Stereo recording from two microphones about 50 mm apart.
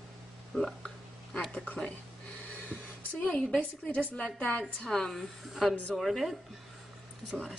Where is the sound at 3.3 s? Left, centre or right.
Centre.